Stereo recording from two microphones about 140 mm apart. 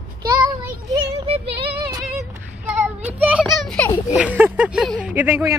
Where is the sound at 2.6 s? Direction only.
10° right (ahead or behind); by 3.9 s 5° left (ahead or behind).